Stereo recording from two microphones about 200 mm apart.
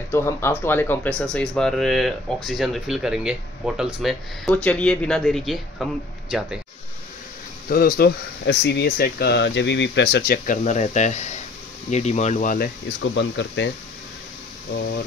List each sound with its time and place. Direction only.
0.1 s speech: 10° left (ahead or behind)
7.7 s speech: 45° left (ahead or behind)
13.1 s speech: 65° left (ahead or behind)